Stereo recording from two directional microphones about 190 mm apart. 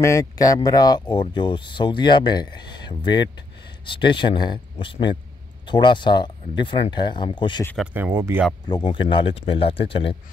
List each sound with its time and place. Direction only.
0.0 s speech: 15° left (ahead or behind)
7.7 s speech: 5° right (ahead or behind)
8.6 s speech: 25° left (ahead or behind)